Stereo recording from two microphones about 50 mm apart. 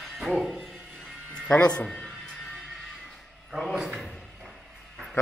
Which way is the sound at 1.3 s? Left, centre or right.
Centre.